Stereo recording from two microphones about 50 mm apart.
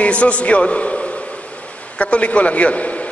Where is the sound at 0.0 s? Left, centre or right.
Left.